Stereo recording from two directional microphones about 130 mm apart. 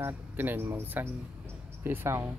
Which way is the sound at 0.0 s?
15° right (ahead or behind).